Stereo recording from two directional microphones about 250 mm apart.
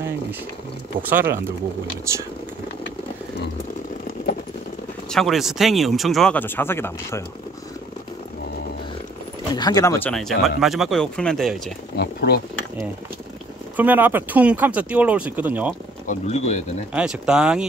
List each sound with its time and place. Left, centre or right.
1.0 s speech: centre
5.1 s speech: centre
9.6 s speech: centre
12.0 s speech: left
13.7 s speech: centre
16.1 s speech: left
16.9 s speech: centre